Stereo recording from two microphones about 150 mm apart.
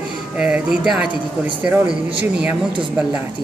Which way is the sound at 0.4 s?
5° right (ahead or behind).